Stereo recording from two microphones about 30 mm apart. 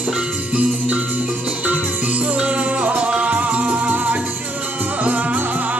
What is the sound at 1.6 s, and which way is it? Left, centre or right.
Music, right.